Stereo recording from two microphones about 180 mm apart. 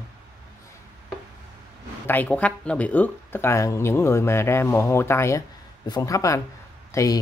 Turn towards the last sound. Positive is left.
turn(degrees=20)  # may be behind; listen again after turning